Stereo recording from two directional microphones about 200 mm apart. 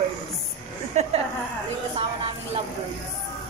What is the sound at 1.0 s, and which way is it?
Speech, 35° right (ahead or behind).